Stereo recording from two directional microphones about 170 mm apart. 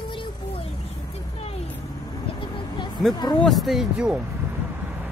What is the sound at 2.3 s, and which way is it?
Vehicle, 25° left (ahead or behind).